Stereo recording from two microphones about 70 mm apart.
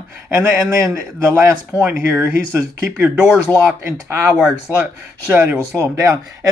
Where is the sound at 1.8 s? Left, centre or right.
Right.